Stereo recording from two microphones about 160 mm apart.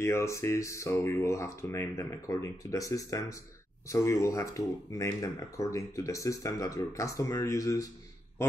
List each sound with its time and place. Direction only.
0.0 s speech: 20° left (ahead or behind)